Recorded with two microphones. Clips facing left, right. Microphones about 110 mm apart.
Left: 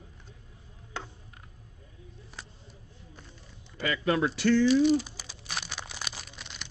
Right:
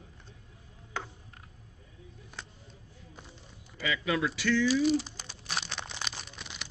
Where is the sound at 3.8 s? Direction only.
40° left (ahead or behind).